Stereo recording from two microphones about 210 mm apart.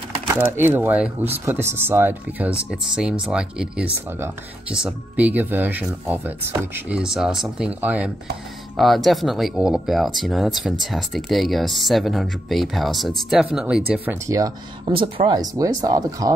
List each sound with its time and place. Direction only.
0.5 s speech: 10° right (ahead or behind)
14.9 s speech: 25° right (ahead or behind)